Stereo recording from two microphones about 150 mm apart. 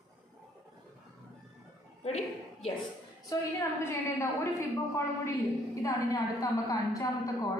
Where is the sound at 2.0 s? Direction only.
45° left (ahead or behind).